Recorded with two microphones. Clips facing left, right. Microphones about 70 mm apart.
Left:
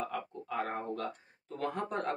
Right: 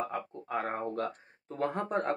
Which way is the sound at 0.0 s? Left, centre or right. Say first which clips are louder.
Right 2 dB; right.